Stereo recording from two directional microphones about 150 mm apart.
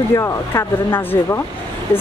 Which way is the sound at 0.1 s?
20° left (ahead or behind).